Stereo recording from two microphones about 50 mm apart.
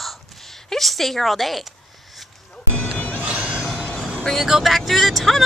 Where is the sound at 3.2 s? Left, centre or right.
Right.